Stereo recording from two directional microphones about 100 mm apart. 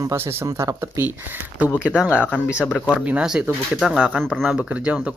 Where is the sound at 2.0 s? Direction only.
10° right (ahead or behind).